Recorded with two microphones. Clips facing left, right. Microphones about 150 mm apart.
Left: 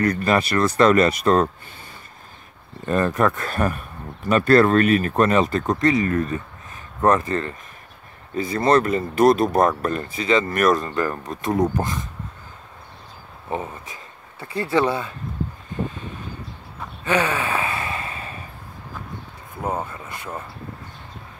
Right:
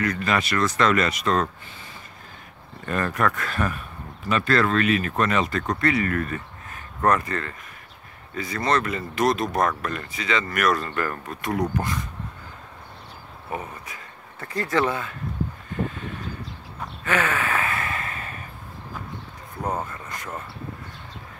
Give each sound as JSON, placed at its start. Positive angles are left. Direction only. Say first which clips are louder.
{"t": 0.0, "sound": "speech", "louder": "left 5 dB", "side_deg": 35}
{"t": 2.9, "sound": "speech", "louder": "left 5 dB", "side_deg": 25}
{"t": 3.4, "sound": "speech", "louder": "left 4 dB", "side_deg": 40}
{"t": 10.8, "sound": "speech", "louder": "left 4 dB", "side_deg": 20}
{"t": 13.5, "sound": "speech", "louder": "left 4 dB", "side_deg": 25}
{"t": 14.4, "sound": "speech", "louder": "left 3 dB", "side_deg": 10}
{"t": 17.0, "sound": "gasp", "louder": "left 3 dB", "side_deg": 20}
{"t": 19.6, "sound": "speech", "louder": "left 2 dB", "side_deg": 10}